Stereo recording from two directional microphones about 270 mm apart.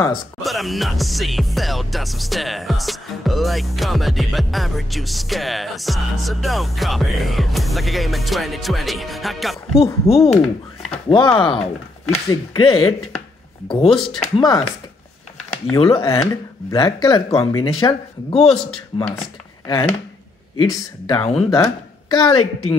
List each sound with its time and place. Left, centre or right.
0.4 s music: centre
9.8 s speech: left
10.4 s speech: centre
11.1 s speech: centre
15.7 s speech: centre
21.1 s speech: centre